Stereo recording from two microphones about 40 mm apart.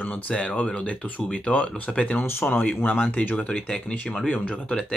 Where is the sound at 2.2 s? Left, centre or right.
Left.